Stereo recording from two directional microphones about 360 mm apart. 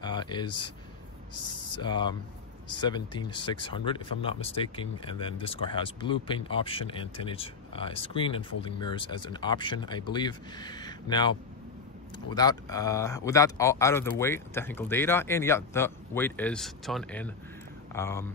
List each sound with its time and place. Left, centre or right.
0.0 s a sound: centre
1.3 s speech: left
1.7 s speech: centre
12.4 s speech: centre